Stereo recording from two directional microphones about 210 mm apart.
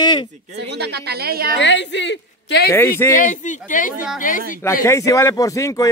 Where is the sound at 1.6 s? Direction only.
55° left (ahead or behind).